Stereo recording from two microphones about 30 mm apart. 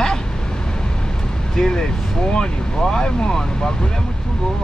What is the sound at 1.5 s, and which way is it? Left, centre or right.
Speech, left.